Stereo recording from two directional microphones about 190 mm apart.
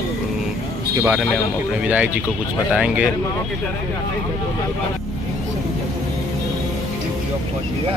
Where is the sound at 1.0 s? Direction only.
5° right (ahead or behind).